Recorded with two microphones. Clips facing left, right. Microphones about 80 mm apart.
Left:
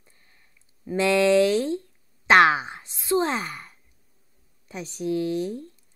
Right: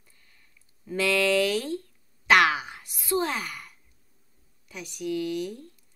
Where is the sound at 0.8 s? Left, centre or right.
Left.